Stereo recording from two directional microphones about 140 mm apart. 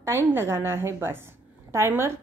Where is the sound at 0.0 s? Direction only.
15° right (ahead or behind).